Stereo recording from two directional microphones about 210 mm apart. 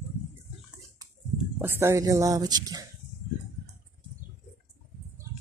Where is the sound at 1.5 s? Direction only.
10° right (ahead or behind).